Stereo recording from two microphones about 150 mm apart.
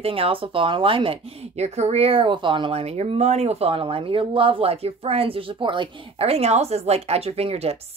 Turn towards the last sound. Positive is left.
turn(degrees=-40)  # may be behind; listen again after turning